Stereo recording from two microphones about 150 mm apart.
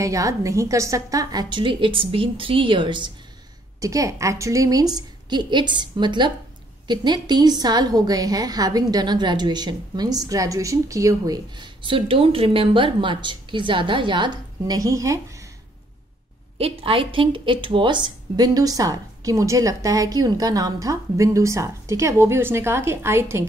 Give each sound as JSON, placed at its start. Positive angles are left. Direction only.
{"t": 0.0, "sound": "a woman's voice", "side_deg": -20}
{"t": 3.8, "sound": "a woman's voice", "side_deg": -20}
{"t": 16.5, "sound": "a woman's voice", "side_deg": -40}